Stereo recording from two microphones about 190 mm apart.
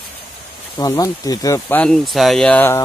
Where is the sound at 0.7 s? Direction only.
20° left (ahead or behind).